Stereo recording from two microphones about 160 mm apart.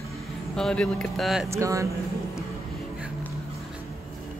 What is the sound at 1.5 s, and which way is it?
Speech, 20° right (ahead or behind).